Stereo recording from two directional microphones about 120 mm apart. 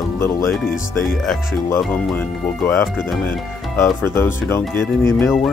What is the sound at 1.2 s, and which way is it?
Speech, 5° left (ahead or behind).